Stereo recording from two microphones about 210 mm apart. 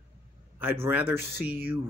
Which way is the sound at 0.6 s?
10° right (ahead or behind).